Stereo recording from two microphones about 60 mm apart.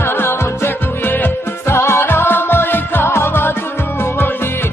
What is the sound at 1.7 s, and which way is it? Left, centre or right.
Music, left.